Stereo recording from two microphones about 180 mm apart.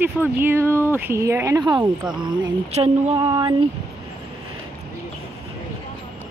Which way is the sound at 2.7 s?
35° right (ahead or behind).